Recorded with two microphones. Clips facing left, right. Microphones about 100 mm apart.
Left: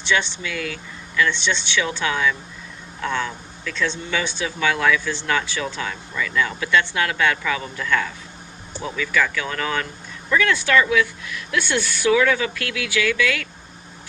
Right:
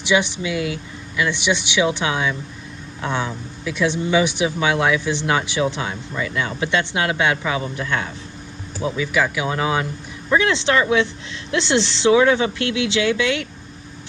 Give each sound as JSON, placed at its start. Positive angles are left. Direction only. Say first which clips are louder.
{"t": 0.0, "sound": "speech", "louder": "right 4 dB", "side_deg": -15}